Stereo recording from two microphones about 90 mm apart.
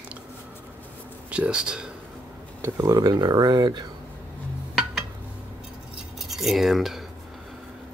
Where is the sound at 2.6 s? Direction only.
30° right (ahead or behind).